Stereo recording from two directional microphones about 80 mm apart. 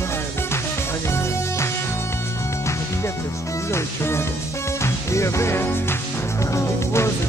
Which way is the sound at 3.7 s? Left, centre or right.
Left.